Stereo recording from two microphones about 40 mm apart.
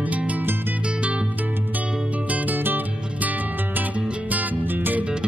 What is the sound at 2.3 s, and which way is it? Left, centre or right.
Music, right.